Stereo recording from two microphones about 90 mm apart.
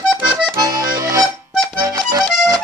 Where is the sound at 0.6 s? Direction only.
40° right (ahead or behind).